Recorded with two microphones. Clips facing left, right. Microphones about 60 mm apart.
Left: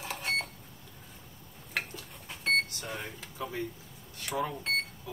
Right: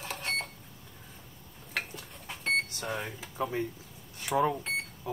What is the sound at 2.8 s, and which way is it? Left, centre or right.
Speech, centre.